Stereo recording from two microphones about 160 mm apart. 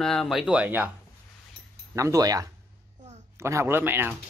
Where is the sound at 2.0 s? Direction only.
20° right (ahead or behind).